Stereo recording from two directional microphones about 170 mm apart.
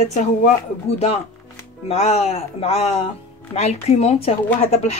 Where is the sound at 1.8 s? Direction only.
35° left (ahead or behind).